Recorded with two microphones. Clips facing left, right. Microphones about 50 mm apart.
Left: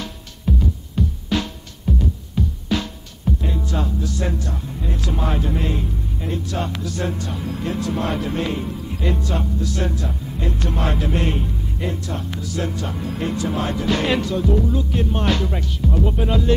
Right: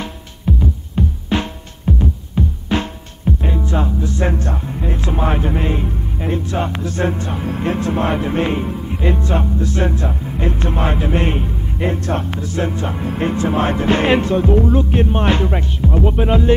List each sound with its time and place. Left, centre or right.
0.5 s music: right